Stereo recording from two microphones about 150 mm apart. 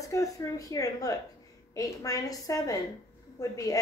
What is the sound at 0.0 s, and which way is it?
A woman's voice, 20° left (ahead or behind).